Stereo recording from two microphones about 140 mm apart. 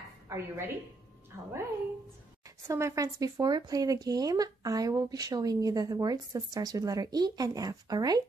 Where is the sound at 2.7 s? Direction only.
20° right (ahead or behind).